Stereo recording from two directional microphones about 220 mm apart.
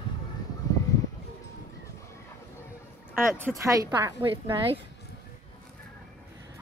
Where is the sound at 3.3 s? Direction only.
10° right (ahead or behind).